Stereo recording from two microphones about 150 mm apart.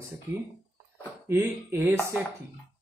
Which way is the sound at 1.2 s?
15° right (ahead or behind).